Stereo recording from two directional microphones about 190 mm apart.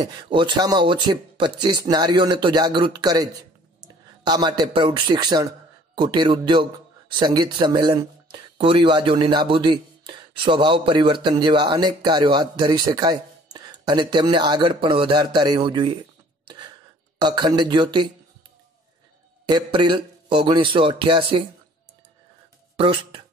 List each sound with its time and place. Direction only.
0.0 s speech: 20° right (ahead or behind)
16.4 s a sound: 25° right (ahead or behind)
17.2 s speech: 20° right (ahead or behind)
19.4 s speech: 25° right (ahead or behind)
22.8 s speech: 30° right (ahead or behind)